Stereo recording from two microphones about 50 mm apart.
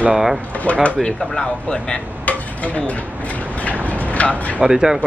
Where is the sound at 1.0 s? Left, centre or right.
Centre.